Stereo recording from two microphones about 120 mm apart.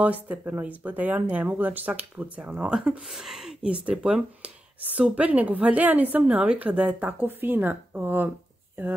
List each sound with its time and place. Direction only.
0.0 s speech: 15° right (ahead or behind)